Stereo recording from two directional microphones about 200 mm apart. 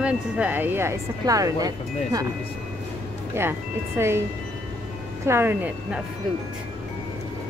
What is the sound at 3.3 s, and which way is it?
Speech, 10° right (ahead or behind).